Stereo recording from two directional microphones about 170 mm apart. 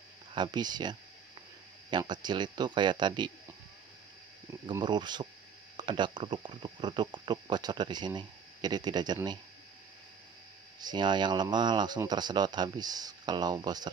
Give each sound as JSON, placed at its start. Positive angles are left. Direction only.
{"t": 0.3, "sound": "speech", "side_deg": -25}
{"t": 4.5, "sound": "speech", "side_deg": -25}
{"t": 10.8, "sound": "speech", "side_deg": -25}